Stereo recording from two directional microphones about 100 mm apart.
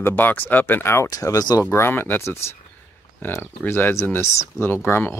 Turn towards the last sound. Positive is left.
turn(degrees=20)  # may be behind; listen again after turning